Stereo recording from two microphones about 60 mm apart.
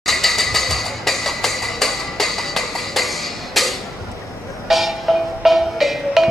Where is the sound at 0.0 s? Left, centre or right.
Centre.